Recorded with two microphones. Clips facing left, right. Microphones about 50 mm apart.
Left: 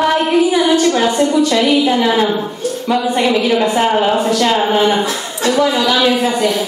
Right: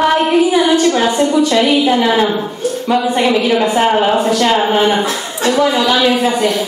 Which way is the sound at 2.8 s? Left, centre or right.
Centre.